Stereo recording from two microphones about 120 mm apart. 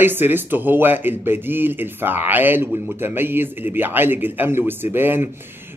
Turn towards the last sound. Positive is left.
turn(degrees=-20)  # may be behind; listen again after turning